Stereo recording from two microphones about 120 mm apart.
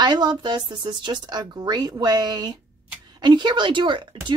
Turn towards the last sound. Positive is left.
turn(degrees=-40)  # may be behind; listen again after turning